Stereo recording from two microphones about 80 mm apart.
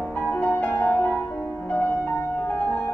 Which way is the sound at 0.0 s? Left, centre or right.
Centre.